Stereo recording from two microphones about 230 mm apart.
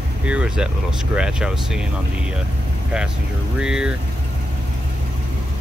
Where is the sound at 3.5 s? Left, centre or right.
Centre.